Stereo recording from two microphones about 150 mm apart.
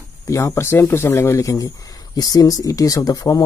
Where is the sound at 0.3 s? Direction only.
20° left (ahead or behind).